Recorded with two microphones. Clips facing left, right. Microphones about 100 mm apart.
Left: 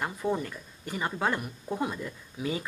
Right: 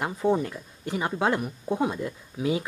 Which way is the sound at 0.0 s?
20° right (ahead or behind).